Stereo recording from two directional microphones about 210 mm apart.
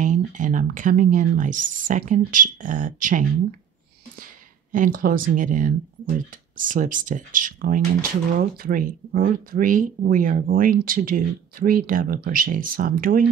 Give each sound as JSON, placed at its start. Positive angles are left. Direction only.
{"t": 0.0, "sound": "speech", "side_deg": -40}
{"t": 4.7, "sound": "speech", "side_deg": -40}